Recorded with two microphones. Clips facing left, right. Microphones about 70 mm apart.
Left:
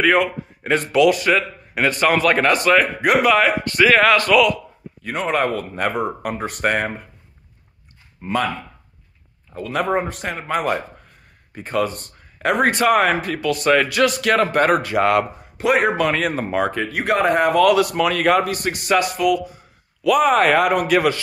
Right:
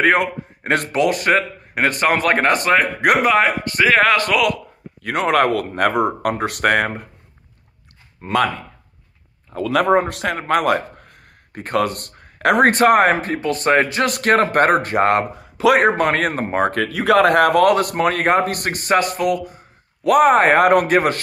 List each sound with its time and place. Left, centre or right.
0.0 s a man's voice: right
0.9 s a man's voice: right
5.0 s speech: right
8.2 s speech: right
9.5 s a man's voice: right
12.7 s a man's voice: right
14.0 s speech: right
16.7 s speech: right
17.6 s a man's voice: right